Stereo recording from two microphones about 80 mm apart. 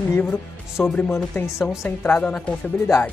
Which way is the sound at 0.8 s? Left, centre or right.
Centre.